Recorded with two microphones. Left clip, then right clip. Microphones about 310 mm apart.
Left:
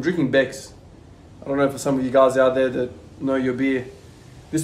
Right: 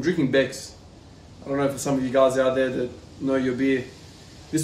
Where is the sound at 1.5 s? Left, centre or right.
Centre.